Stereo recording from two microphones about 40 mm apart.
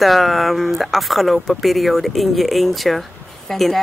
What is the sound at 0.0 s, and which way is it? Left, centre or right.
Speech, centre.